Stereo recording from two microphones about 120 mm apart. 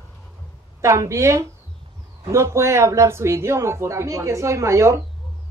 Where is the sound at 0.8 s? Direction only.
25° right (ahead or behind).